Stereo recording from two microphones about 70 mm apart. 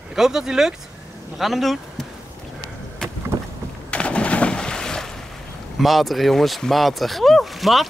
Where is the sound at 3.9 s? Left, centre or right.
Centre.